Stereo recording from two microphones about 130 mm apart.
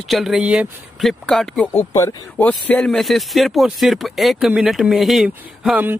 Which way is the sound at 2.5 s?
10° left (ahead or behind).